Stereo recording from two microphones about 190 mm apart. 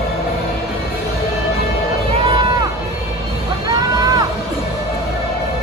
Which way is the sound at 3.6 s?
20° right (ahead or behind).